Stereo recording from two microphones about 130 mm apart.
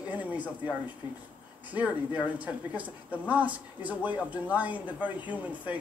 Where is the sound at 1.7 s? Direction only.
10° right (ahead or behind).